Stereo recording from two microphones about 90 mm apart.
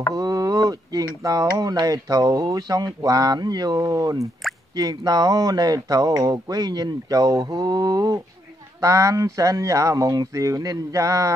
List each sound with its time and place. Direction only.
0.1 s speech: 40° right (ahead or behind)